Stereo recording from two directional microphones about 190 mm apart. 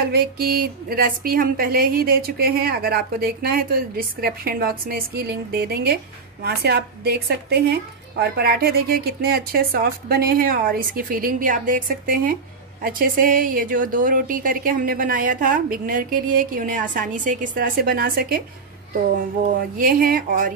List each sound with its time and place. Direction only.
0.0 s a woman's voice: 55° right (ahead or behind)
19.8 s a woman's voice: 50° right (ahead or behind)